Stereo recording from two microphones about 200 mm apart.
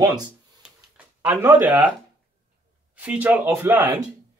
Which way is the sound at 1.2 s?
10° right (ahead or behind).